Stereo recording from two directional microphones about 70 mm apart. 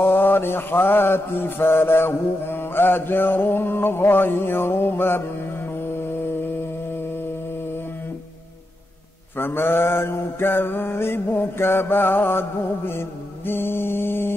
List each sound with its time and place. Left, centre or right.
0.0 s mantra: left
9.4 s mantra: left